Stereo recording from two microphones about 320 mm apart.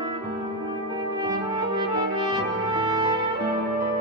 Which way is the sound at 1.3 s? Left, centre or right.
Centre.